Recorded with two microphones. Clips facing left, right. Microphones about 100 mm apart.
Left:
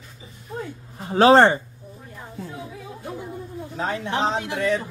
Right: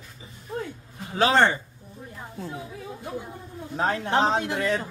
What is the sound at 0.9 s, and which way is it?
Speech, 35° left (ahead or behind).